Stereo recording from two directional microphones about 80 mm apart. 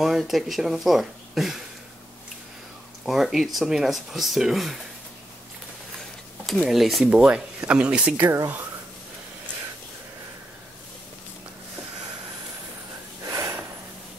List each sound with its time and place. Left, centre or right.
0.0 s speech: centre
3.1 s speech: centre
6.6 s speech: centre
13.3 s snort: right